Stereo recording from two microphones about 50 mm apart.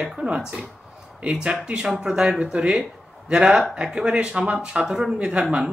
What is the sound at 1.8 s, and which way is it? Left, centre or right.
Speech, centre.